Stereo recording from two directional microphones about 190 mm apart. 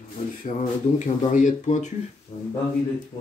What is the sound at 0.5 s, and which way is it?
Speech, 40° left (ahead or behind).